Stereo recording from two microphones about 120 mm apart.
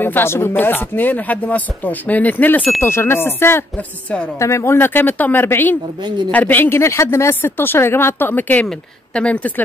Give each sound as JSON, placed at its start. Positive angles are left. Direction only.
{"t": 0.0, "sound": "a woman's voice", "side_deg": 20}